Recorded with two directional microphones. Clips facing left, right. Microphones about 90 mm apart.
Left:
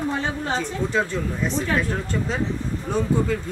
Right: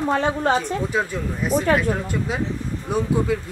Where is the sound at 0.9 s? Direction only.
10° right (ahead or behind).